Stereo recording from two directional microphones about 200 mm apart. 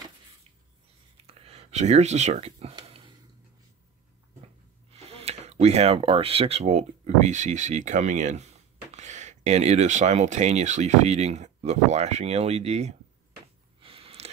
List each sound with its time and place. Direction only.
1.2 s speech: 30° right (ahead or behind)
4.9 s speech: 30° right (ahead or behind)
13.7 s a sound: 30° right (ahead or behind)